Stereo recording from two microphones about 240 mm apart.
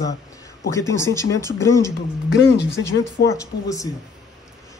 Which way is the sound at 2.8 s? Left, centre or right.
Left.